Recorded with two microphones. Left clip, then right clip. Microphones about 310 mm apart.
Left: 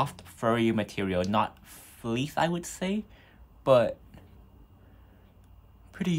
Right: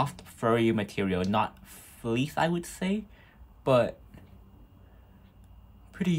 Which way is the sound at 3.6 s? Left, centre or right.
Centre.